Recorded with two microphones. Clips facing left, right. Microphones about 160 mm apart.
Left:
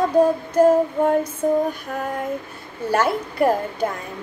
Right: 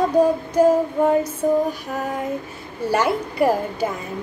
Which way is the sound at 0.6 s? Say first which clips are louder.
Left 1 dB; 10° right (ahead or behind).